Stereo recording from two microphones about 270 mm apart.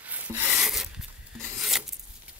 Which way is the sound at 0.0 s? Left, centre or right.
Centre.